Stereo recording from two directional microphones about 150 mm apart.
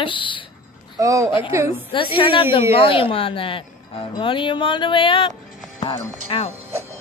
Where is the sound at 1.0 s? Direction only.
20° right (ahead or behind).